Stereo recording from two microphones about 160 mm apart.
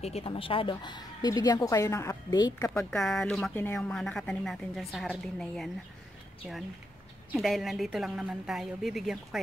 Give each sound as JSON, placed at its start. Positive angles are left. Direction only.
{"t": 0.0, "sound": "speech", "side_deg": 35}
{"t": 2.7, "sound": "a woman's voice", "side_deg": 5}
{"t": 7.3, "sound": "a woman's voice", "side_deg": 0}